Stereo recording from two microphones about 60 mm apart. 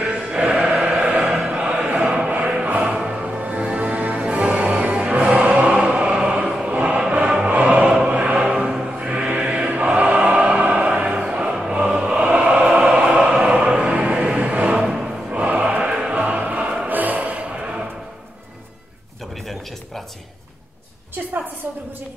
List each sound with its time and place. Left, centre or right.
0.0 s music: centre
0.8 s choir: centre
2.6 s music: right
8.1 s choir: right
9.1 s music: right